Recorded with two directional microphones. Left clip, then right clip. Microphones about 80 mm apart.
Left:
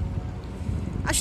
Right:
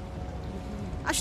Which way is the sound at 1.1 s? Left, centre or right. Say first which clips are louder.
Left 2 dB; centre.